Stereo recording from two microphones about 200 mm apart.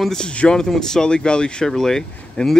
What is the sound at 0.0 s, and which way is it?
Speech, 5° left (ahead or behind).